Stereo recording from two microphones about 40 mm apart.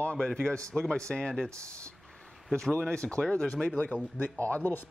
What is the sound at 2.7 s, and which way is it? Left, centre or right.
Speech, left.